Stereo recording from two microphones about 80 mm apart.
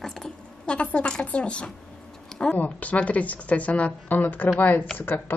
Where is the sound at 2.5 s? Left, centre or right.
Centre.